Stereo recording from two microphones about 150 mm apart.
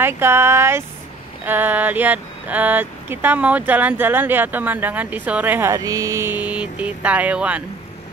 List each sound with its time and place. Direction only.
0.0 s speech: 15° right (ahead or behind)